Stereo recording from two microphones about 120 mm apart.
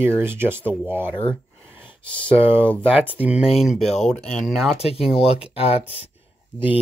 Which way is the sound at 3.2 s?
10° right (ahead or behind).